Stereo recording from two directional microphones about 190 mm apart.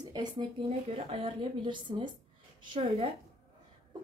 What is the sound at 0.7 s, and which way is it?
A woman's voice, 35° right (ahead or behind).